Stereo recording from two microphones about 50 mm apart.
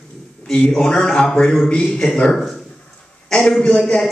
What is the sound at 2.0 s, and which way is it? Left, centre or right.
Speech, centre.